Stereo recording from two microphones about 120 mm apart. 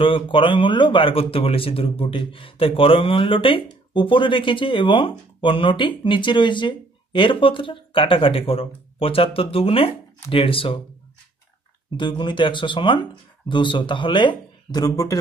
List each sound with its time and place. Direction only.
0.0 s speech: 45° left (ahead or behind)
12.0 s speech: 40° left (ahead or behind)